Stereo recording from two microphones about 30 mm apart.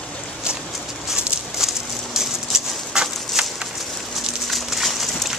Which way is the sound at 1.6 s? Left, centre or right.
Centre.